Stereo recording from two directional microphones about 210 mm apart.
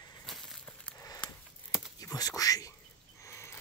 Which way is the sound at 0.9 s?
15° left (ahead or behind).